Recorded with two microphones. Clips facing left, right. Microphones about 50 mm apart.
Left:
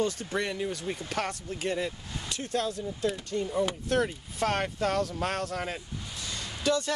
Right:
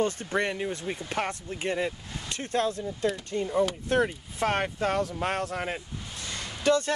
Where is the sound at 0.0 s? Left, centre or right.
Right.